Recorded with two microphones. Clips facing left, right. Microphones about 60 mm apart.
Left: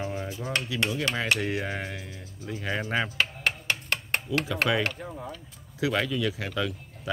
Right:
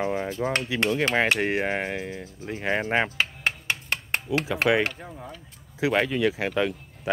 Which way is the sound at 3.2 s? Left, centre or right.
Right.